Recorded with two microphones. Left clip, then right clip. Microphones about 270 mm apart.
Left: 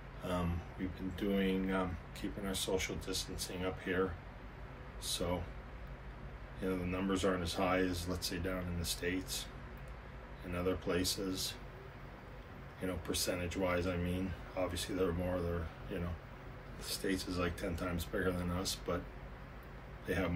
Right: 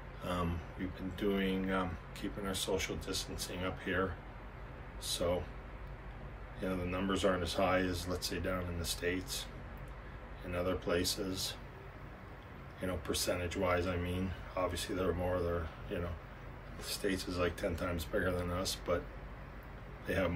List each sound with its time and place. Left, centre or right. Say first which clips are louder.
0.2 s a sound: right 1 dB; centre
1.1 s speech: right 1 dB; centre
5.0 s a man's voice: right 3 dB; centre
6.6 s a man's voice: right 1 dB; centre
10.5 s a man's voice: right 2 dB; centre
12.8 s a man's voice: right 2 dB; centre
20.1 s a man's voice: right 2 dB; centre